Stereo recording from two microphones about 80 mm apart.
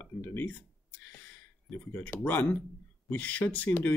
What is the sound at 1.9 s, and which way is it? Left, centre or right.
Speech, left.